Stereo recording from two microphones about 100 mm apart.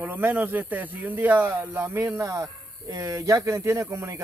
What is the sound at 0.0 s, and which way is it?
Speech, 20° right (ahead or behind).